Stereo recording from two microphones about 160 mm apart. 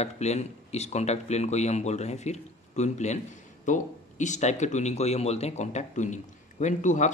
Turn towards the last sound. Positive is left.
turn(degrees=50)  # may be behind; listen again after turning